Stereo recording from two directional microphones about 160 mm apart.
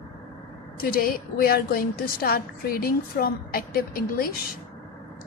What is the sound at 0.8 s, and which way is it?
A woman's voice, 65° left (ahead or behind).